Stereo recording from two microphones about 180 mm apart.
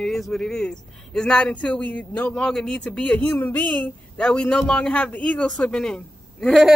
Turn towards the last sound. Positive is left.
turn(degrees=0)  # may be behind; listen again after turning